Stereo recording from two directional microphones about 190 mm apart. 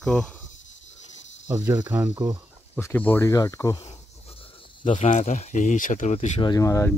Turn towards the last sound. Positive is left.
turn(degrees=15)  # may be behind; listen again after turning